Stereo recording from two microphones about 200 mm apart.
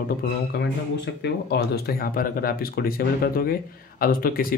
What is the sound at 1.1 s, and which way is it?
Speech, 55° left (ahead or behind).